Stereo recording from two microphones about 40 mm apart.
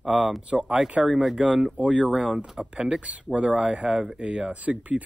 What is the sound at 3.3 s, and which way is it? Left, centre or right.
Speech, right.